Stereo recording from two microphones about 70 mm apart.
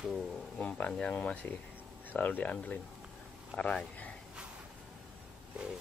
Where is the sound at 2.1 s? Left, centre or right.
Left.